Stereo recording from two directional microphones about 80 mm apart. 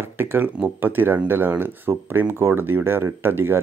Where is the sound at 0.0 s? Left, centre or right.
Right.